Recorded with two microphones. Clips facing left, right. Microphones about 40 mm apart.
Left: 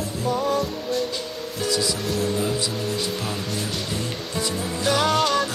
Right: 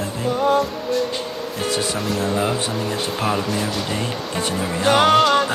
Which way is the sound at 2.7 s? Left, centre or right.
Centre.